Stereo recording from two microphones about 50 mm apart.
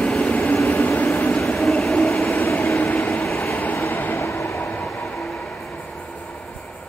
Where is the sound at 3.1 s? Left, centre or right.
Left.